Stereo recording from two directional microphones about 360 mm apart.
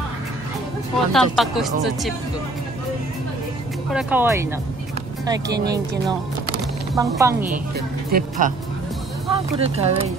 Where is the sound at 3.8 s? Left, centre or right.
Centre.